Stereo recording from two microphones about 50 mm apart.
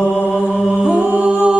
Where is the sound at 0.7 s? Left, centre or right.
Right.